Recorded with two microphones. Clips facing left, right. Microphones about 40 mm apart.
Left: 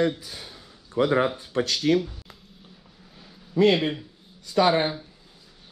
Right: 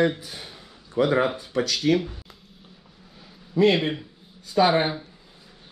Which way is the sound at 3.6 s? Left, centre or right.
Centre.